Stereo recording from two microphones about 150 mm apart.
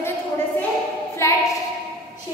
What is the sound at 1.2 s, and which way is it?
Speech, 20° left (ahead or behind).